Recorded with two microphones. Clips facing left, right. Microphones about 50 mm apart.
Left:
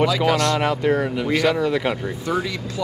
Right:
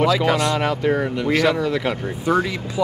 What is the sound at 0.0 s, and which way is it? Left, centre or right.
Speech, centre.